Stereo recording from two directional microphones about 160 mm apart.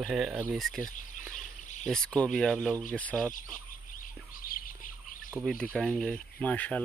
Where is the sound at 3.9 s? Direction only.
60° left (ahead or behind).